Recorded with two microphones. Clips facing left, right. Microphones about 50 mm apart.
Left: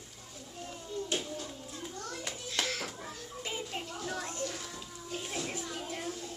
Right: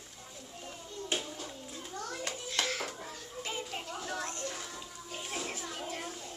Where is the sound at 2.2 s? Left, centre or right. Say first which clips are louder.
Even; centre.